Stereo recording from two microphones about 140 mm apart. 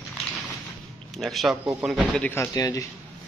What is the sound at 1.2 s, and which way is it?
Speech, centre (ahead or behind).